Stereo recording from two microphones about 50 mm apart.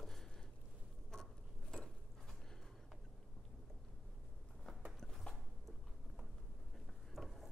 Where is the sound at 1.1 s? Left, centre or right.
Centre.